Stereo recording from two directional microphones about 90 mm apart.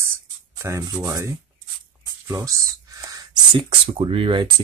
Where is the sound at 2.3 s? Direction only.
35° right (ahead or behind).